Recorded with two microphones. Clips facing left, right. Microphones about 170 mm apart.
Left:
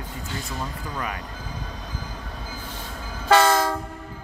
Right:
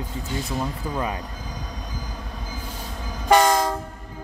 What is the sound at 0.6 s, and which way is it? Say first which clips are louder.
Speech: right 4 dB; 25° right (ahead or behind).